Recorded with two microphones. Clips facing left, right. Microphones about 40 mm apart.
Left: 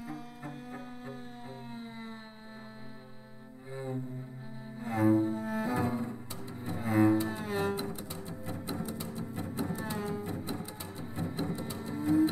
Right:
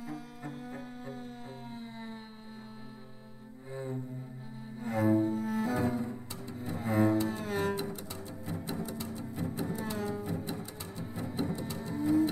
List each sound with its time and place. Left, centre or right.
0.0 s music: centre
1.7 s a sound: centre
3.7 s cello: centre
5.9 s music: centre
6.9 s cello: centre
8.5 s music: centre